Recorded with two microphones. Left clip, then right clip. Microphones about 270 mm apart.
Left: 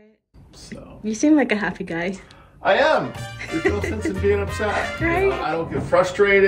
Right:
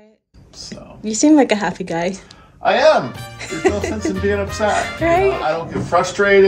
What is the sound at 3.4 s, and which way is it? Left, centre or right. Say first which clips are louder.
Speech: right 4 dB; centre.